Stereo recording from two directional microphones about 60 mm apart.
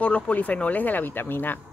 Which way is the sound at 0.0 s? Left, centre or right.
Left.